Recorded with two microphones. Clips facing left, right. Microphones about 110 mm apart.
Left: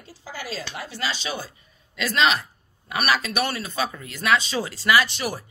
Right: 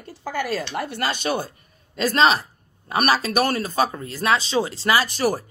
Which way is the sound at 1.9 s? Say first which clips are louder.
Right 4 dB; 40° right (ahead or behind).